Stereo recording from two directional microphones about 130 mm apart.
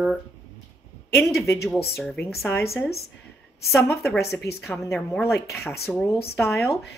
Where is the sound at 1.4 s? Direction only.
20° left (ahead or behind).